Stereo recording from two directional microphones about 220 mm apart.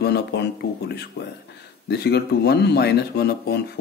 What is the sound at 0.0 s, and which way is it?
Speech, 50° left (ahead or behind).